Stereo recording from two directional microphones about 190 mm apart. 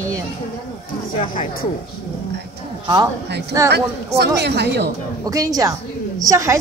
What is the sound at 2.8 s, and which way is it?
Speech, 25° right (ahead or behind).